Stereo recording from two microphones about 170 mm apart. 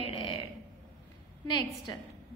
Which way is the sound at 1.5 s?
25° left (ahead or behind).